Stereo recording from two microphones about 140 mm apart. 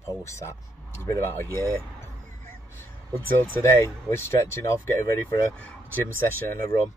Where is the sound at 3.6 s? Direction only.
20° left (ahead or behind).